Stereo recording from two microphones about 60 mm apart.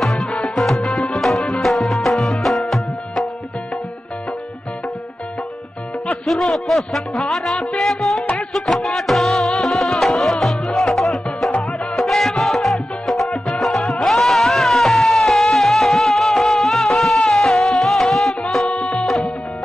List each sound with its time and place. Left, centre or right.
0.0 s music: centre
6.5 s music: centre
18.8 s music: centre